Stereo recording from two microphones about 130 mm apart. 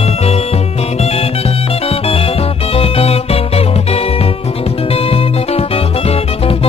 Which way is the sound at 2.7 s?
50° left (ahead or behind).